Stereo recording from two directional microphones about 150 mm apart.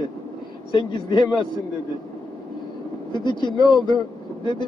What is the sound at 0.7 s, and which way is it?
Speech, 30° left (ahead or behind).